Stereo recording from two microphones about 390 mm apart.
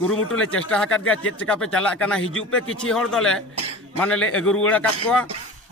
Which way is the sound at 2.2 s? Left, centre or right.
Left.